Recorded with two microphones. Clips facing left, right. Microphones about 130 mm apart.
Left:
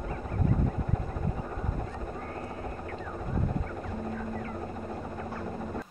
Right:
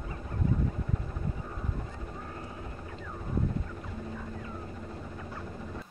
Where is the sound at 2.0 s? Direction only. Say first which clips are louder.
Left 5 dB; 55° left (ahead or behind).